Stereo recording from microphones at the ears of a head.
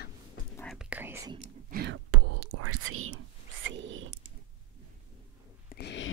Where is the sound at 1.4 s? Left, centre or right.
Right.